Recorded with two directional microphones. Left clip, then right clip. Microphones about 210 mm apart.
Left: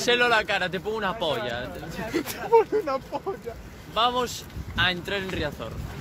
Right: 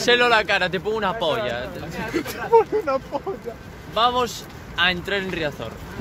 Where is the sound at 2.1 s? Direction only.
30° left (ahead or behind).